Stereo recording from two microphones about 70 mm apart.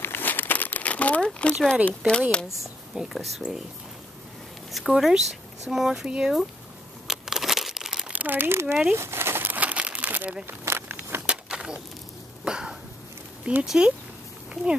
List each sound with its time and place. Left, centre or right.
0.0 s crumpling: left; by 1.8 s centre
1.9 s speech: centre
2.6 s speech: centre
4.7 s speech: centre
7.1 s crumpling: centre
8.1 s speech: right
8.9 s crumpling: right
10.4 s a sound: right
11.2 s a sound: centre
13.7 s speech: centre